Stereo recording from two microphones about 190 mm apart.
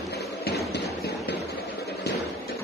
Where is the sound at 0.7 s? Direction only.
60° left (ahead or behind).